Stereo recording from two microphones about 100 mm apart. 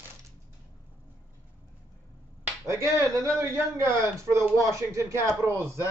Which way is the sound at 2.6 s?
30° right (ahead or behind).